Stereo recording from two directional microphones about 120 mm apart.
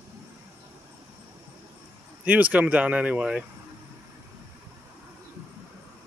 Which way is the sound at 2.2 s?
10° right (ahead or behind).